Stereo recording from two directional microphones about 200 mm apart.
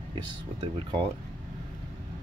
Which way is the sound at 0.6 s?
25° right (ahead or behind).